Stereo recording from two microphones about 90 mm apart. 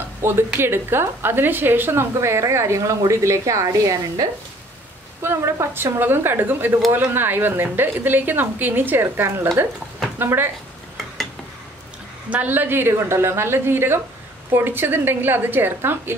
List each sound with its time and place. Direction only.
0.2 s a woman's voice: 25° right (ahead or behind)
5.2 s a woman's voice: 30° right (ahead or behind)
12.3 s a woman's voice: 20° right (ahead or behind)